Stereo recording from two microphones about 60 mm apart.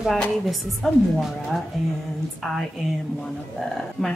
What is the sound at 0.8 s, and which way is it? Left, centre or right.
Speech, centre.